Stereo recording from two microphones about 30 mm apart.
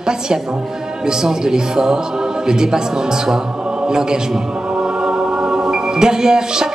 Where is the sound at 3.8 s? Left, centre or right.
Right.